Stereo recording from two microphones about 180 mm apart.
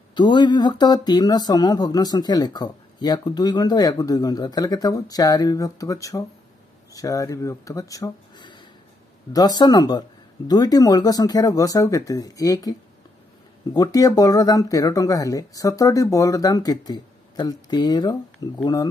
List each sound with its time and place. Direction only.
0.1 s speech: 25° left (ahead or behind)
13.7 s speech: 20° left (ahead or behind)